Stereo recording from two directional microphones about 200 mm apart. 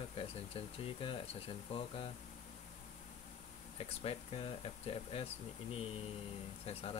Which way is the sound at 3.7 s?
30° left (ahead or behind).